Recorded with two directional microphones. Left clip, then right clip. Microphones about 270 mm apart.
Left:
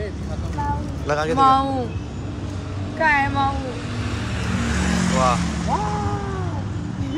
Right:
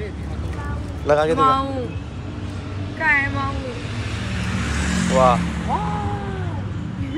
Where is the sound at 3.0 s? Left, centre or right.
Left.